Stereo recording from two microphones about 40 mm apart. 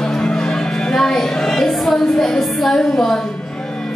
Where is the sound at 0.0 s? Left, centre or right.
Centre.